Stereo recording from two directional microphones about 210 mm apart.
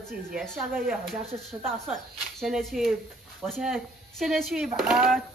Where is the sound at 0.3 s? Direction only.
Centre (ahead or behind).